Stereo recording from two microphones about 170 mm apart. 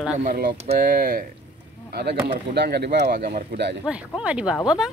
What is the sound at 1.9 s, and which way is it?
Speech, 75° right (ahead or behind).